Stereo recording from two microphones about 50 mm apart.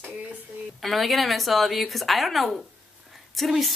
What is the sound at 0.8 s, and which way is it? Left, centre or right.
Speech, centre.